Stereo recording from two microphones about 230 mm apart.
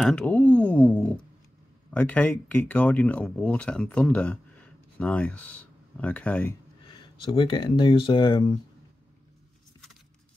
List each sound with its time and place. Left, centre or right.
0.0 s speech: centre
6.9 s speech: left